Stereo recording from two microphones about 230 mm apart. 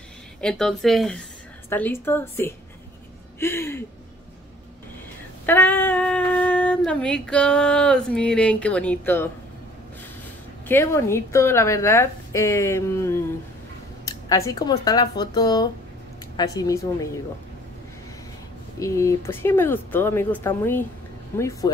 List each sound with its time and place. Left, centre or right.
0.4 s a woman's voice: centre
5.5 s speech: centre
10.7 s a woman's voice: centre
18.8 s a woman's voice: centre